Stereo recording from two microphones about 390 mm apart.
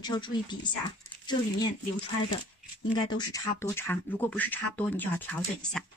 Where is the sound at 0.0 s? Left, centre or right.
Centre.